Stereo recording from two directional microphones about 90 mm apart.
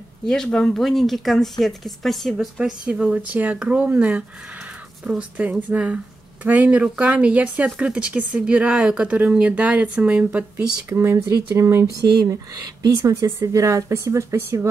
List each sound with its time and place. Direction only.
0.2 s speech: 5° left (ahead or behind); by 10.4 s 15° right (ahead or behind)
10.9 s speech: 30° right (ahead or behind)
12.8 s speech: 35° right (ahead or behind)